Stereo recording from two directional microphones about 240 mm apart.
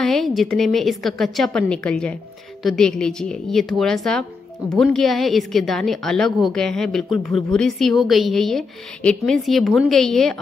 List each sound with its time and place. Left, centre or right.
0.0 s a woman's voice: centre